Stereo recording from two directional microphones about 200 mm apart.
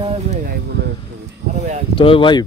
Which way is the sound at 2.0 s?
25° left (ahead or behind).